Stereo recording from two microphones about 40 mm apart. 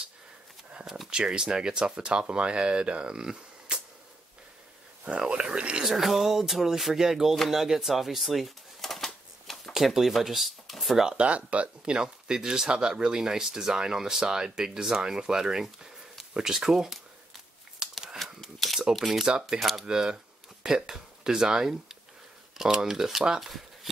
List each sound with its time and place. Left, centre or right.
1.1 s speech: centre
5.0 s speech: right
5.9 s speech: centre
7.3 s a sound: centre
9.7 s speech: centre
11.1 s speech: right; by 15.6 s centre
15.6 s a sound: centre
16.3 s speech: centre
17.8 s a sound: centre
18.2 s a sound: centre
18.9 s speech: centre
19.2 s speech: centre
23.4 s shuffling cards: centre